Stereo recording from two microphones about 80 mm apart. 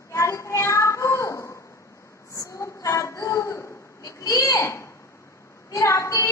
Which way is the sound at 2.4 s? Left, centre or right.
Left.